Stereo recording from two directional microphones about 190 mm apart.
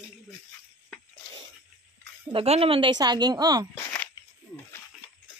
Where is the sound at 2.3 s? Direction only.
30° right (ahead or behind).